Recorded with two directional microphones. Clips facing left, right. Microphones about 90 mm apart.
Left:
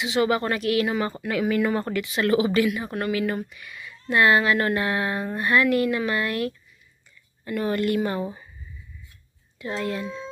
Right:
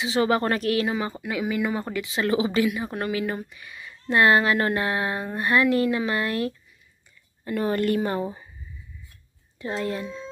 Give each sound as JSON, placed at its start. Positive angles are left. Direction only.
{"t": 0.0, "sound": "speech", "side_deg": -30}
{"t": 0.8, "sound": "speech", "side_deg": -20}
{"t": 2.0, "sound": "speech", "side_deg": -25}
{"t": 9.6, "sound": "speech", "side_deg": -30}